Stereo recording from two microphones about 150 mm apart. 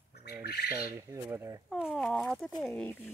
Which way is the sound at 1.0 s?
20° right (ahead or behind).